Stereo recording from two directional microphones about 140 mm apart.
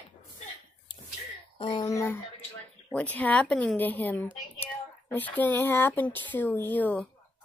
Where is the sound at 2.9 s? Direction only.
10° left (ahead or behind).